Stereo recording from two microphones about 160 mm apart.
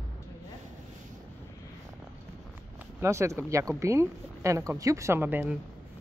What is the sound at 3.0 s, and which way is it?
Speech, 20° right (ahead or behind).